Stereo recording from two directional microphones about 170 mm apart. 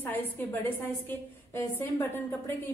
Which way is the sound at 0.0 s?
10° left (ahead or behind).